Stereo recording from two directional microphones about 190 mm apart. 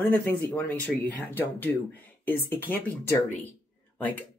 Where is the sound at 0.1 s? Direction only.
10° left (ahead or behind).